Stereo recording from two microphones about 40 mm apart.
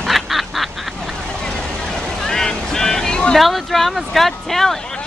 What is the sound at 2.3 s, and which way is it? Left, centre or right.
Vehicle, centre.